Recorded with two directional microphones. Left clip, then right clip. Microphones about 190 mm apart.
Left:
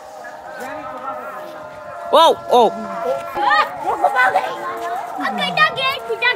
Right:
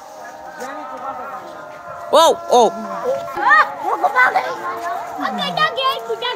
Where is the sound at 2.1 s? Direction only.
10° right (ahead or behind).